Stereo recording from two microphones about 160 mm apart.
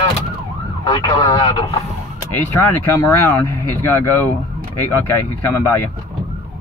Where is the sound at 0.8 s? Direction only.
30° left (ahead or behind).